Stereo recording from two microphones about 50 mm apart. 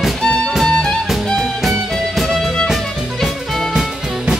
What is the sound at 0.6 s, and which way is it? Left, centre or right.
Music, centre.